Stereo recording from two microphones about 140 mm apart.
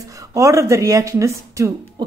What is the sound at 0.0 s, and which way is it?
Speech, 25° right (ahead or behind).